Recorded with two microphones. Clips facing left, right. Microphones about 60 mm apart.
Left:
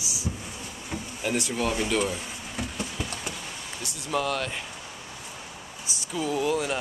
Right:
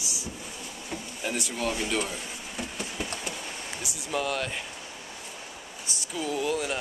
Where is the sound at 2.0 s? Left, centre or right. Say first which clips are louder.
Left 5 dB; centre.